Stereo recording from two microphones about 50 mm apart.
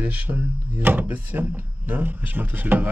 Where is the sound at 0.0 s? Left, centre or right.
Right.